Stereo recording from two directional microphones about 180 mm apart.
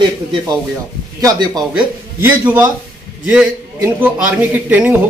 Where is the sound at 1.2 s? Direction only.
20° right (ahead or behind).